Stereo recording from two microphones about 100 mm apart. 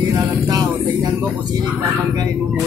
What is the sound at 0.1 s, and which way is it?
Music, 35° right (ahead or behind).